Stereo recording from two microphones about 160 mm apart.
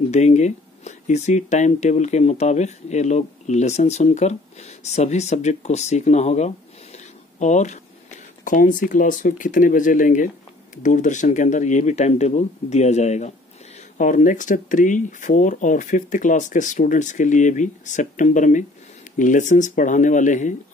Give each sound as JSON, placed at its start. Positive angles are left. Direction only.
{"t": 0.1, "sound": "speech", "side_deg": 45}